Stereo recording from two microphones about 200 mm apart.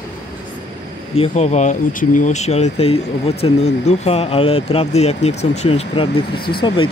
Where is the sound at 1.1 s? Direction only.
30° left (ahead or behind).